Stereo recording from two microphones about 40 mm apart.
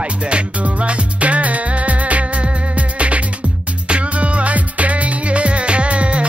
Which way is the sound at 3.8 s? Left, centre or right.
Right.